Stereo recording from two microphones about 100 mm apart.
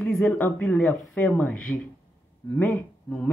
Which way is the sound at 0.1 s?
15° left (ahead or behind).